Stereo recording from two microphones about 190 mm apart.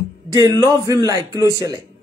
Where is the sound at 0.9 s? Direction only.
20° right (ahead or behind).